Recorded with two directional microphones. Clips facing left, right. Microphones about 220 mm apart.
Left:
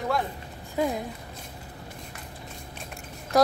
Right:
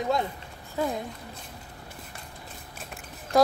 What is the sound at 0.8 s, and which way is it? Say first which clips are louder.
Speech: left 2 dB; 15° left (ahead or behind).